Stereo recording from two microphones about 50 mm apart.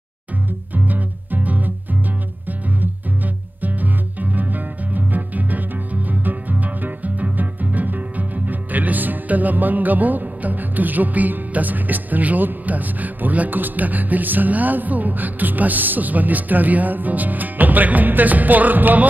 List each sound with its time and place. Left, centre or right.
0.7 s music: right
3.6 s music: right